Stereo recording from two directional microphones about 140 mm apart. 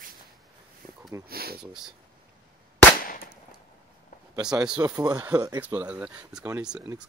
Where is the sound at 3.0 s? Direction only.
90° left.